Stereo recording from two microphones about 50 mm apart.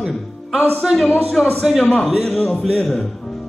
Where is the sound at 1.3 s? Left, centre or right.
Centre.